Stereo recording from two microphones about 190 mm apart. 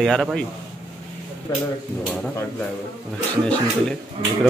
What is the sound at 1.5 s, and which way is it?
Speech, 20° left (ahead or behind).